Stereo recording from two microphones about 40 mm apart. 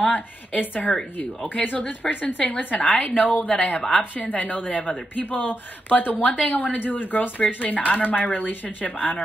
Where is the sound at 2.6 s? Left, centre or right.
Left.